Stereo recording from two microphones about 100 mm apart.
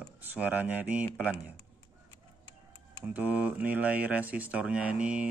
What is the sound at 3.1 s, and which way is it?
Speech, 15° right (ahead or behind).